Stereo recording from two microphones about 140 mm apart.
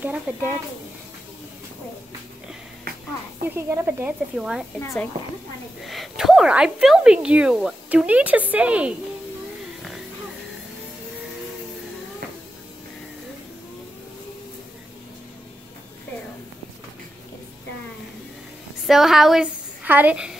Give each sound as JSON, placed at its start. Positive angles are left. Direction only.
{"t": 0.3, "sound": "speech", "side_deg": -10}
{"t": 3.4, "sound": "speech", "side_deg": -20}
{"t": 4.7, "sound": "speech", "side_deg": 20}
{"t": 5.9, "sound": "speech", "side_deg": 0}
{"t": 18.9, "sound": "a woman's voice", "side_deg": 0}